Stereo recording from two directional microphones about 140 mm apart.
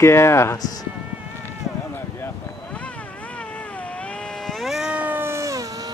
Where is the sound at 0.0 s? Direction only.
20° left (ahead or behind).